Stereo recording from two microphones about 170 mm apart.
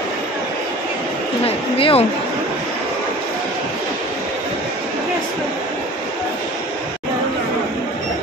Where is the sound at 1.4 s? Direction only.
35° left (ahead or behind).